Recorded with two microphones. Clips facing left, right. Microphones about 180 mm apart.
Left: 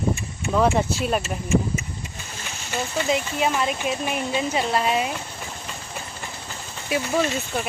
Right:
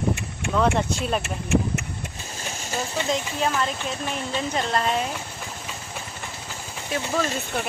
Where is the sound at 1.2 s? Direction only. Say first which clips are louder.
Left 1 dB; 70° right (ahead or behind).